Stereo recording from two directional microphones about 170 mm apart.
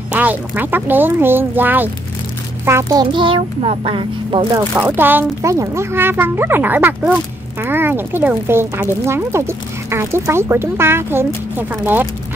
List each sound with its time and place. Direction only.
0.1 s a child's voice: 10° right (ahead or behind); by 4.6 s 30° right (ahead or behind)
4.7 s speech: 10° right (ahead or behind)